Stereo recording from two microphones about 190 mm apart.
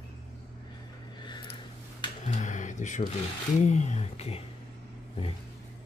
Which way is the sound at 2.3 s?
40° left (ahead or behind).